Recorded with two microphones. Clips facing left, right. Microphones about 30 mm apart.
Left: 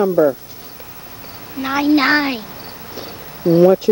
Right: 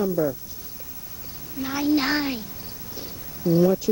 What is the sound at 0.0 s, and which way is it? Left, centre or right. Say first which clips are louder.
Speech: left 10 dB; left.